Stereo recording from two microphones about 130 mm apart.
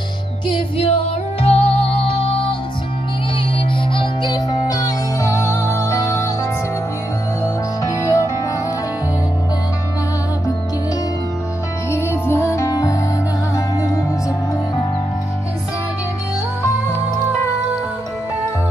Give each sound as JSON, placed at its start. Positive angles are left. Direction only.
{"t": 0.5, "sound": "music", "side_deg": 45}
{"t": 3.9, "sound": "music", "side_deg": 40}
{"t": 7.4, "sound": "music", "side_deg": 25}
{"t": 11.9, "sound": "music", "side_deg": 20}